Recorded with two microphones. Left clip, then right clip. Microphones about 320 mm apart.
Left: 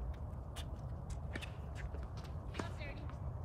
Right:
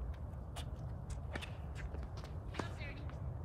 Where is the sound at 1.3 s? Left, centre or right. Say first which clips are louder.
Right 1 dB; centre.